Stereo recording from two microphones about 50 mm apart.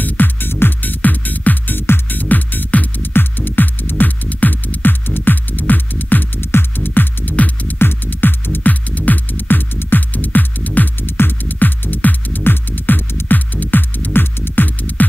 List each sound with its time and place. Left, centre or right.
0.0 s music: left